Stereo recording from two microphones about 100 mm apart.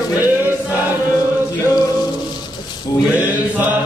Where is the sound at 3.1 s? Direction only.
15° right (ahead or behind).